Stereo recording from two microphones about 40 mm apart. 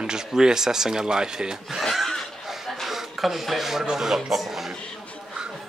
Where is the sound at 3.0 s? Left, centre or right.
Centre.